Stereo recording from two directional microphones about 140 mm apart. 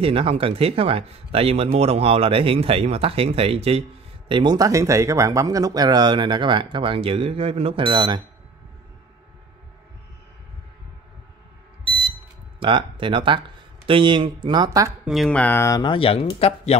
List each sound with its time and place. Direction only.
0.0 s speech: 40° right (ahead or behind)
4.3 s speech: 35° right (ahead or behind)
12.5 s speech: 35° right (ahead or behind)
15.0 s speech: 5° left (ahead or behind)
15.8 s speech: 40° left (ahead or behind)